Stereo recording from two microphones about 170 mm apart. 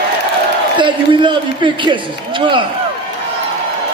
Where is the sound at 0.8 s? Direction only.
30° right (ahead or behind).